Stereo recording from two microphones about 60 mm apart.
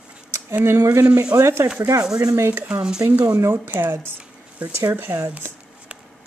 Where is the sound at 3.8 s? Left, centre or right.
Right.